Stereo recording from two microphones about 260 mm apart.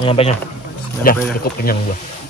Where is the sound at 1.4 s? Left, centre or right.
Left.